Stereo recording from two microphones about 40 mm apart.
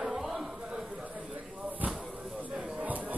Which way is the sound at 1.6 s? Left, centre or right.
Right.